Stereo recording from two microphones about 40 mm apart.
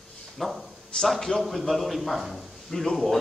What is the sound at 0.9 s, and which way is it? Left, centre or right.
Speech, centre.